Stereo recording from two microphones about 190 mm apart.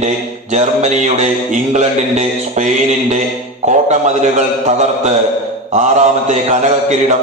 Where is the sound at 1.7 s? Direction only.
40° right (ahead or behind).